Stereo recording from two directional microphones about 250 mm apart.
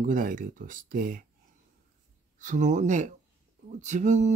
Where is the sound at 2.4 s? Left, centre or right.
Right.